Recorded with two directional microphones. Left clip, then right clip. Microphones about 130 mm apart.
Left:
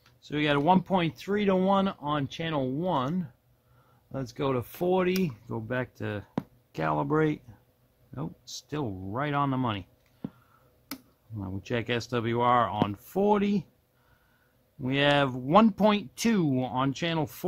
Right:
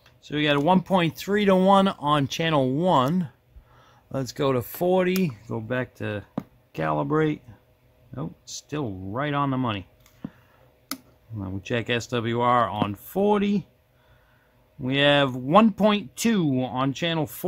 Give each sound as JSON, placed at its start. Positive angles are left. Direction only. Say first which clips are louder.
{"t": 0.0, "sound": "speech", "louder": "right 4 dB", "side_deg": 0}
{"t": 0.8, "sound": "speech", "louder": "right 5 dB", "side_deg": -20}
{"t": 4.1, "sound": "speech", "louder": "right 5 dB", "side_deg": -25}
{"t": 4.7, "sound": "a sound", "louder": "right 3 dB", "side_deg": -10}
{"t": 5.6, "sound": "speech", "louder": "right 4 dB", "side_deg": -5}
{"t": 11.3, "sound": "speech", "louder": "right 4 dB", "side_deg": 0}
{"t": 14.8, "sound": "speech", "louder": "right 4 dB", "side_deg": 0}